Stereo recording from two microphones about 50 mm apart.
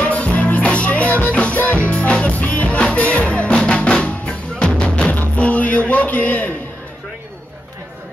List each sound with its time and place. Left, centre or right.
0.0 s music: left
3.6 s drum: centre
5.1 s music: left